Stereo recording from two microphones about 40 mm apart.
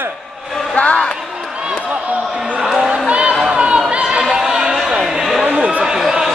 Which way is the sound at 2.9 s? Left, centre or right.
Right.